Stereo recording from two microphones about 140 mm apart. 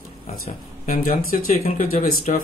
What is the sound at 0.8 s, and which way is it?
Speech, 85° left.